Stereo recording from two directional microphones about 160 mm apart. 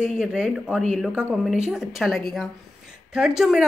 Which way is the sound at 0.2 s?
5° right (ahead or behind).